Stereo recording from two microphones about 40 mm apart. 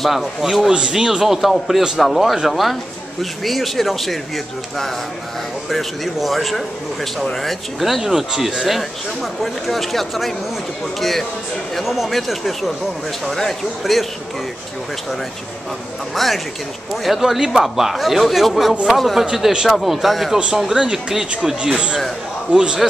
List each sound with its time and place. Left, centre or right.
0.0 s speech: centre
0.6 s speech: right
1.2 s speech: centre
5.7 s speech: centre
8.0 s speech: centre
16.2 s speech: centre
17.2 s speech: centre
20.7 s speech: centre